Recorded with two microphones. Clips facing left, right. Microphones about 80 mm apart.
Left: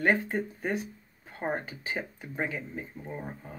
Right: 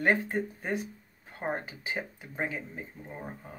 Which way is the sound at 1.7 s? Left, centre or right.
Centre.